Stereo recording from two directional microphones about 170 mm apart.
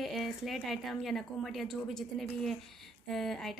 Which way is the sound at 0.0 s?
Centre (ahead or behind).